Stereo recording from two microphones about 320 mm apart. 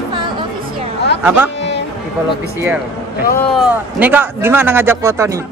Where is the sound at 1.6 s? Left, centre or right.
Left.